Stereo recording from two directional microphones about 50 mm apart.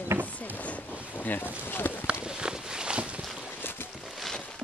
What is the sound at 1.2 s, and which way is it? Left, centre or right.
Boat, left.